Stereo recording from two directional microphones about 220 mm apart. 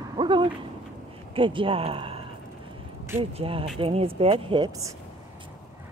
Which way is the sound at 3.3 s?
25° right (ahead or behind).